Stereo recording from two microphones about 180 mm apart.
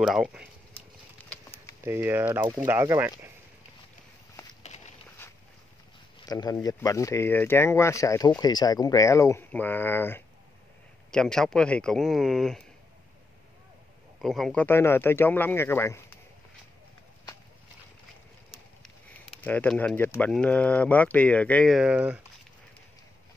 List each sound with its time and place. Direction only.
0.0 s speech: 5° right (ahead or behind)
1.9 s speech: 10° right (ahead or behind)
6.2 s speech: 20° left (ahead or behind); by 12.6 s centre (ahead or behind)
14.2 s speech: centre (ahead or behind)
19.2 s speech: 5° left (ahead or behind)